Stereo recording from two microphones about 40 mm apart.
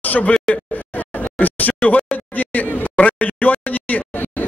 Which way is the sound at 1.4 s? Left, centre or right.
Left.